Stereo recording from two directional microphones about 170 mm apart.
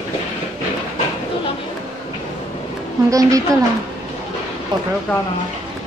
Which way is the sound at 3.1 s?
20° right (ahead or behind).